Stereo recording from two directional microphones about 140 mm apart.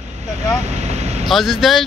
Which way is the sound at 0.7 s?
50° right (ahead or behind).